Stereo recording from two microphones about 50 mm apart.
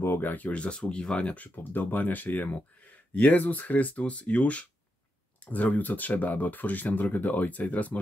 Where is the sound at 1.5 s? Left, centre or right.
Left.